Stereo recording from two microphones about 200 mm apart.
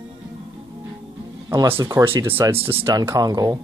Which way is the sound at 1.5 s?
15° right (ahead or behind).